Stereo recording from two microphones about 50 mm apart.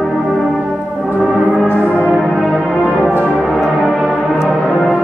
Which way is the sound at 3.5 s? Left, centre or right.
Centre.